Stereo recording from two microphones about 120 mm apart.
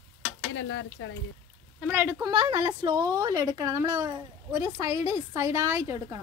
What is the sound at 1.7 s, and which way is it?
Speech, 10° right (ahead or behind).